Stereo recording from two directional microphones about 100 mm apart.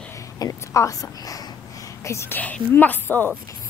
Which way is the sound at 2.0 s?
25° left (ahead or behind).